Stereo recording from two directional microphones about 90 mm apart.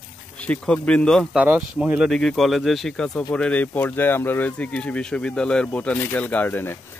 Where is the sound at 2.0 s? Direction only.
5° left (ahead or behind).